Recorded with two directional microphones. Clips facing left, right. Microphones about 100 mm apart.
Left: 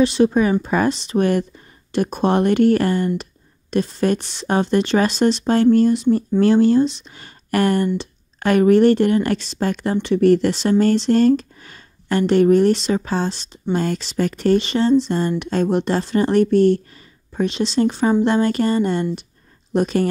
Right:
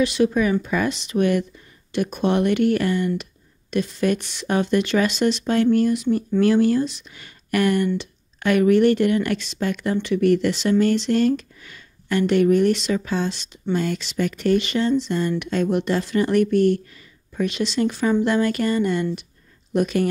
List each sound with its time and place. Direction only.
0.0 s speech: 30° left (ahead or behind)